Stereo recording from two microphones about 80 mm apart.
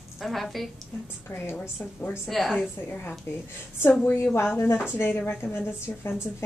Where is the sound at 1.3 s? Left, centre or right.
Left.